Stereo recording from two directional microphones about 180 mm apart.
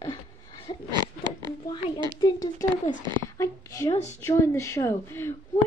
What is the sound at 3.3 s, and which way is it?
Speech, 15° left (ahead or behind).